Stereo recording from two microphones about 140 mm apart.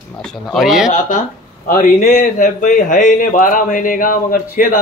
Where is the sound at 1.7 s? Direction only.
75° left (ahead or behind).